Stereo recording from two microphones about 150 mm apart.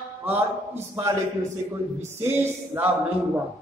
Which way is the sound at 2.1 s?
15° right (ahead or behind).